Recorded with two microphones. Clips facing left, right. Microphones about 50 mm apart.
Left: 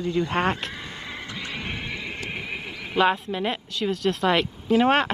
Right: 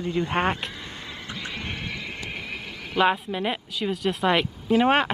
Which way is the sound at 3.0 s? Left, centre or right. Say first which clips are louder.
Even; centre.